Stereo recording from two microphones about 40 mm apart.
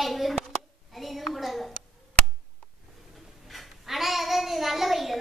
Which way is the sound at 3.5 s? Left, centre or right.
Centre.